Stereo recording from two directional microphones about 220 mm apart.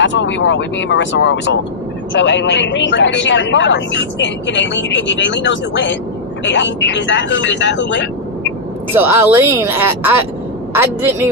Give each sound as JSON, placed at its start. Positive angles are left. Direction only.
{"t": 0.0, "sound": "speech", "side_deg": 55}
{"t": 8.9, "sound": "a woman's voice", "side_deg": -10}